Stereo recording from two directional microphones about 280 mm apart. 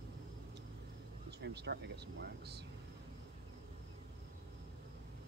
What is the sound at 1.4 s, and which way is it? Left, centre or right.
Speech, right.